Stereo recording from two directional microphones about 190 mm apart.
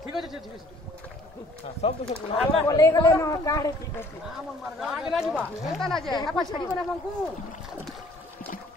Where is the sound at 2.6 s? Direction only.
20° left (ahead or behind).